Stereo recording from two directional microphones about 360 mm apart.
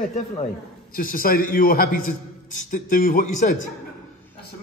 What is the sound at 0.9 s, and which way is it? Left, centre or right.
A man's voice, left.